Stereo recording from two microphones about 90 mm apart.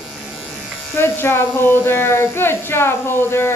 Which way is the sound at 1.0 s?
25° left (ahead or behind).